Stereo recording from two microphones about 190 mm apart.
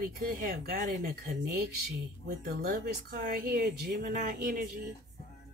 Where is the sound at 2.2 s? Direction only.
50° right (ahead or behind).